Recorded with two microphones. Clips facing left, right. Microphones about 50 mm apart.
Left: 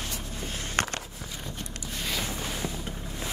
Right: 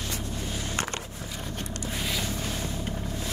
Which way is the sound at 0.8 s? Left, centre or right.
Left.